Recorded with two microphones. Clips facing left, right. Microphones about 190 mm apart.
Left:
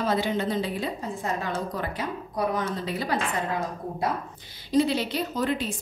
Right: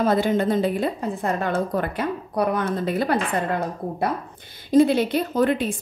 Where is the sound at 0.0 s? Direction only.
50° right (ahead or behind).